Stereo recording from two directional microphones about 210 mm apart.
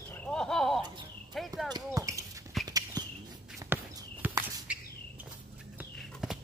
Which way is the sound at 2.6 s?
20° right (ahead or behind).